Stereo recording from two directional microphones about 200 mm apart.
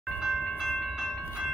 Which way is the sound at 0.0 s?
Centre (ahead or behind).